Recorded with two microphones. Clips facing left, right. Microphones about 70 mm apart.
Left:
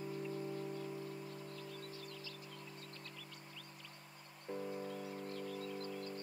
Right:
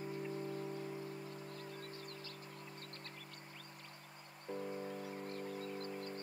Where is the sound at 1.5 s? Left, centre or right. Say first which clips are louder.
Even; right.